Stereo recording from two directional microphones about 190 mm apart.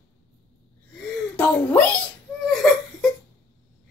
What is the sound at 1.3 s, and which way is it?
Speech, 10° left (ahead or behind).